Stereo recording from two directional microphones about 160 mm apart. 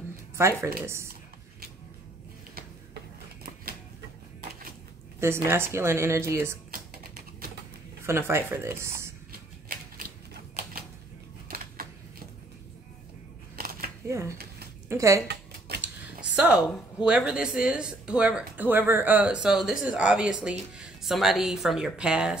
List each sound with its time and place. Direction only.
0.4 s speech: 15° right (ahead or behind)
5.2 s speech: 15° right (ahead or behind)
6.7 s typing: 70° right (ahead or behind)
8.0 s speech: 15° right (ahead or behind)
11.4 s a sound: 70° right (ahead or behind)
13.6 s a sound: 75° right (ahead or behind)
14.0 s speech: 15° right (ahead or behind)
15.8 s speech: 10° right (ahead or behind)